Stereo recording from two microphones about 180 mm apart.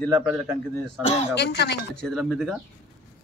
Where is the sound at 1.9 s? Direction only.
Centre (ahead or behind).